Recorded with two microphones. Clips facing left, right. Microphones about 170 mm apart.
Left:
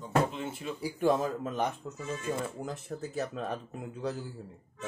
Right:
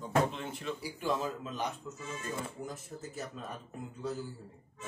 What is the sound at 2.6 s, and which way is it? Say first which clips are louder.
Speech: left 5 dB; 70° left (ahead or behind).